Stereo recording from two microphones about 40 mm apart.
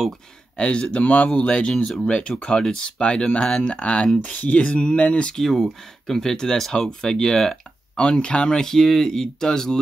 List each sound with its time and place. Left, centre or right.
0.6 s speech: left
5.5 s speech: centre
6.9 s speech: centre